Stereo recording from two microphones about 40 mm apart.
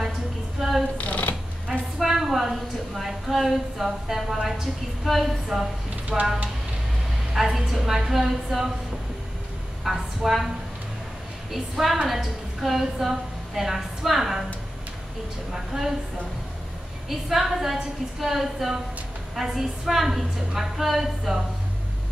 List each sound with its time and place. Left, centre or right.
0.6 s a sound: centre
0.9 s a sound: left
1.7 s a woman's voice: centre
7.5 s a woman's voice: centre
9.8 s a woman's voice: centre
11.5 s a woman's voice: centre
15.5 s a woman's voice: centre
17.3 s a woman's voice: centre